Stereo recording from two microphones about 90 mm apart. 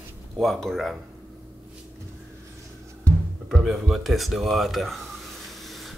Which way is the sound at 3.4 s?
Centre (ahead or behind).